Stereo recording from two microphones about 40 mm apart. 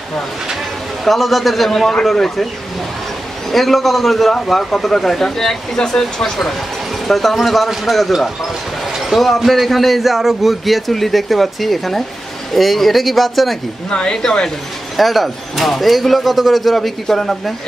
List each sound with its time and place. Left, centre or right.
1.0 s a man's voice: centre
3.5 s a man's voice: centre
7.1 s a man's voice: centre
13.8 s a man's voice: left
15.0 s a man's voice: centre